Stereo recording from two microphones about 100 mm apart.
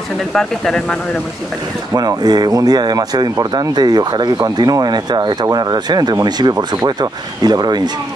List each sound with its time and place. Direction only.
0.3 s speech: 5° left (ahead or behind)
2.0 s speech: 40° right (ahead or behind)